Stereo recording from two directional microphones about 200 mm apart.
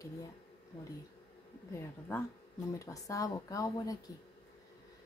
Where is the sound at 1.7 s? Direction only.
10° left (ahead or behind).